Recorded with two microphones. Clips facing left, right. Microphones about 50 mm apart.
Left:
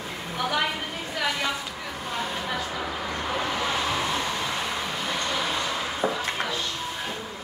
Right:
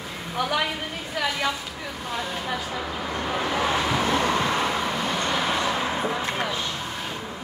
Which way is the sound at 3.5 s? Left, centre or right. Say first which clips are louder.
Right 3 dB; right.